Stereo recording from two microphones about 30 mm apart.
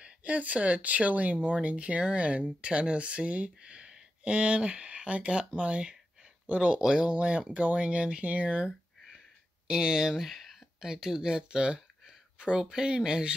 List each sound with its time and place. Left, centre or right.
0.0 s speech: right
6.8 s speech: right
7.2 s speech: right
7.8 s speech: right
8.2 s speech: right
9.7 s speech: right
10.2 s a sound: centre
10.8 s speech: right